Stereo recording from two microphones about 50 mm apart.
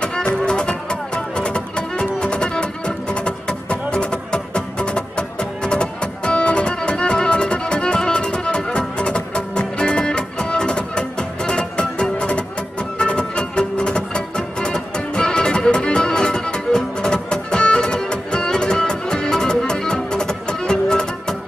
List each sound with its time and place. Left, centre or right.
0.0 s music: centre